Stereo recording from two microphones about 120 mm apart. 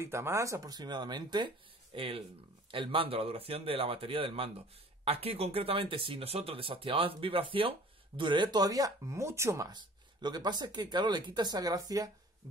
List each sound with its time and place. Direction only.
0.0 s a man's voice: 20° right (ahead or behind)
9.8 s speech: 35° right (ahead or behind)